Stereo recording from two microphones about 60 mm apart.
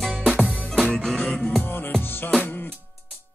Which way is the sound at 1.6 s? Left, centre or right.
Left.